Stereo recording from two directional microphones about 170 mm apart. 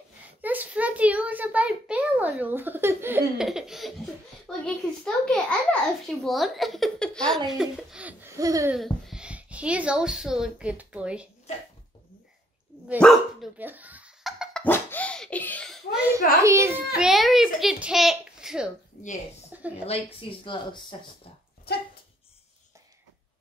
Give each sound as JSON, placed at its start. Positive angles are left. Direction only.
{"t": 0.4, "sound": "a child's voice", "side_deg": -10}
{"t": 3.3, "sound": "a child's voice", "side_deg": -5}
{"t": 8.4, "sound": "laughter", "side_deg": -20}
{"t": 8.7, "sound": "speech", "side_deg": 0}
{"t": 13.0, "sound": "a child's voice", "side_deg": 5}
{"t": 13.6, "sound": "a sound", "side_deg": -10}
{"t": 14.6, "sound": "baby laughter", "side_deg": 10}
{"t": 16.4, "sound": "a child's voice", "side_deg": -15}
{"t": 18.9, "sound": "speech", "side_deg": 60}
{"t": 19.5, "sound": "a sound", "side_deg": -10}
{"t": 19.9, "sound": "speech", "side_deg": 30}